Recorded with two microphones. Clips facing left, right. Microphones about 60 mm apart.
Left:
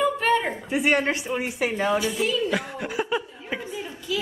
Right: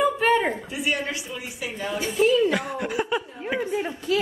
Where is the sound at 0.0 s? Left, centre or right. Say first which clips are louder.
Right 1 dB; centre.